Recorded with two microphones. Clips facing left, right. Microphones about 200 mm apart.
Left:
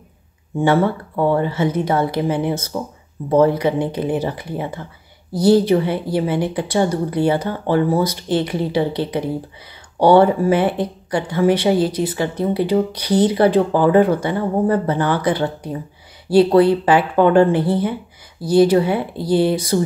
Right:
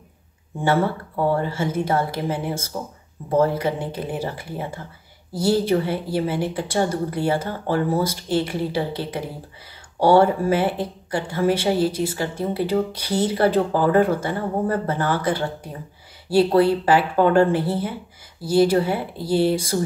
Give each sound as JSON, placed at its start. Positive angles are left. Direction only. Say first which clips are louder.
{"t": 1.4, "sound": "speech", "louder": "left 5 dB", "side_deg": 20}